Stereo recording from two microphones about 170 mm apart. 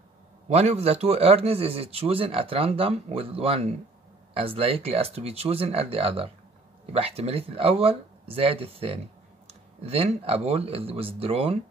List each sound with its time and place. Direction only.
0.5 s a man's voice: 40° right (ahead or behind)